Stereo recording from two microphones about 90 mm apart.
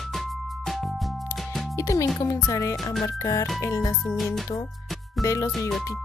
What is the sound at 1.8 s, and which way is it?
Speech, 35° left (ahead or behind).